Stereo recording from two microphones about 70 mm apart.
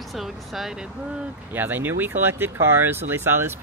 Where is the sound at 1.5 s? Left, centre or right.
Right.